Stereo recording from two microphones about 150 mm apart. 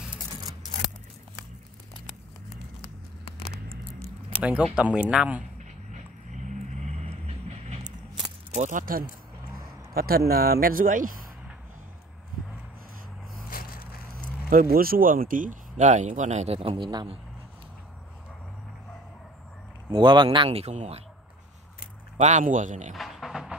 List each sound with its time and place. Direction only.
4.4 s speech: 10° right (ahead or behind)
6.9 s vehicle: 45° right (ahead or behind)
8.5 s speech: 60° right (ahead or behind)
9.6 s speech: 90° right; by 11.1 s 65° right (ahead or behind)
13.5 s splinter: 75° left (ahead or behind)
14.1 s speech: 70° right (ahead or behind); by 16.5 s 50° right (ahead or behind)
16.5 s speech: 35° right (ahead or behind)
19.9 s speech: 30° right (ahead or behind)
22.1 s speech: 50° right (ahead or behind)
22.9 s music: centre (ahead or behind)